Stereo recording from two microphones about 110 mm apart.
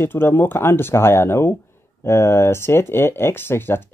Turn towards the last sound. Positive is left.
turn(degrees=20)  # may be behind; listen again after turning